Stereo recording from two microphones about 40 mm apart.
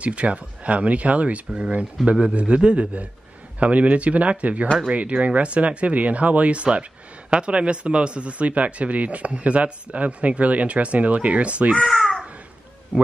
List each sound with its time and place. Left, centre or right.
0.0 s speech: right
11.8 s a child's voice: centre
12.9 s speech: right